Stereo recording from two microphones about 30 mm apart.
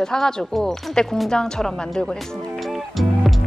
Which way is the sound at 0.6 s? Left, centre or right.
Centre.